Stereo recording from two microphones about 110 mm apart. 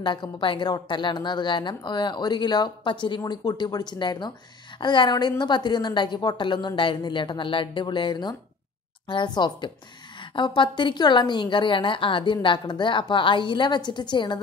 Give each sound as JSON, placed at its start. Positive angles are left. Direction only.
{"t": 0.0, "sound": "a woman's voice", "side_deg": 45}